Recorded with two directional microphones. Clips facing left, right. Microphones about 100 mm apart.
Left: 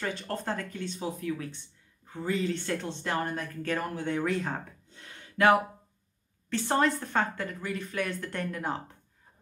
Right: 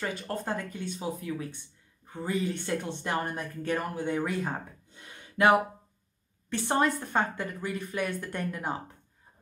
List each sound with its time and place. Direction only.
0.0 s a woman's voice: 10° right (ahead or behind)